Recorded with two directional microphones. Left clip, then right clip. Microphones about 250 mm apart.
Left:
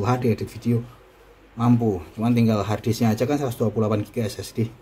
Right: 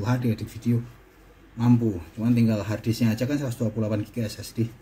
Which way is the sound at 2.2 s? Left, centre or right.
Left.